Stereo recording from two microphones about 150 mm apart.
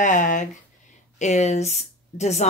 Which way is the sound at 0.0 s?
55° left (ahead or behind).